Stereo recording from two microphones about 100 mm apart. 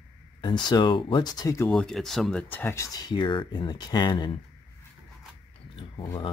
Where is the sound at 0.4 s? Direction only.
45° left (ahead or behind).